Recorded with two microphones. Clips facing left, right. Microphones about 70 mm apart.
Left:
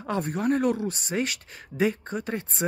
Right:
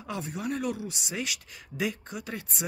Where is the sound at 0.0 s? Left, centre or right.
Left.